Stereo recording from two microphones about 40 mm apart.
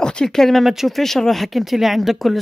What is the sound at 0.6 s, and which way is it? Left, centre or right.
Speech, centre.